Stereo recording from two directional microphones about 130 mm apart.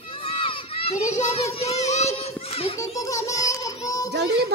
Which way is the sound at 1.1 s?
65° left (ahead or behind).